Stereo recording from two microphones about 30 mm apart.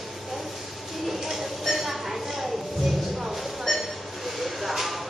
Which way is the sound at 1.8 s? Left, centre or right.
Centre.